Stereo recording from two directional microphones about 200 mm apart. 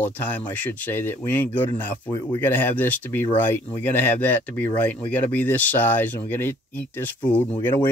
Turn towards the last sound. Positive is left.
turn(degrees=10)  # may be behind; listen again after turning